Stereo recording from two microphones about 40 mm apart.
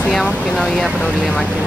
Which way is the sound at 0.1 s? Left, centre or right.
Left.